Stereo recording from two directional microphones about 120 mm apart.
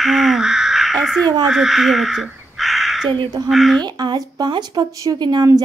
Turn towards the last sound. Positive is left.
turn(degrees=-35)  # may be behind; listen again after turning